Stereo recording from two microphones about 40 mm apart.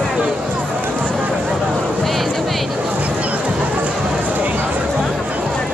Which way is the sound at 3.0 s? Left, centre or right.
Right.